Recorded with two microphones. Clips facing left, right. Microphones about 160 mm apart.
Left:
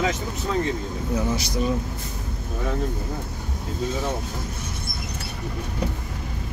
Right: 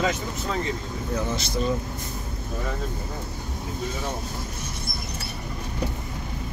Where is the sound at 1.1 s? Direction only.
15° left (ahead or behind).